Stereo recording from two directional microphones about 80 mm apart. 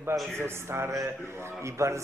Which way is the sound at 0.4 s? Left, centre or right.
Right.